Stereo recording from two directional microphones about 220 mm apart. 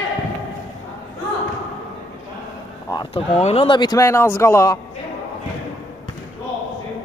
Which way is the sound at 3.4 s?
25° left (ahead or behind).